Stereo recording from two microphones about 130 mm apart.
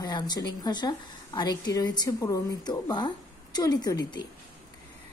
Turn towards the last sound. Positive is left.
turn(degrees=35)  # may be behind; listen again after turning